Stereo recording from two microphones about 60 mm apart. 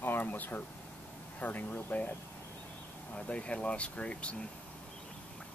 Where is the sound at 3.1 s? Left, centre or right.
Left.